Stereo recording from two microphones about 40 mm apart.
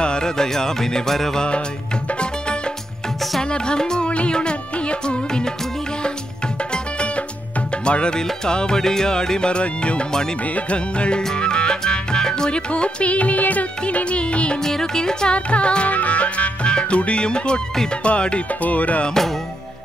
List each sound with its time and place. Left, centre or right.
0.0 s music: centre
2.0 s music: left
6.7 s music: left
14.6 s music: centre
15.3 s music: left
15.9 s music: left
18.6 s music: left